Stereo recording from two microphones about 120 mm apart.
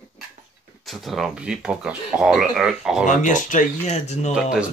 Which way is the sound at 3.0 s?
90° left.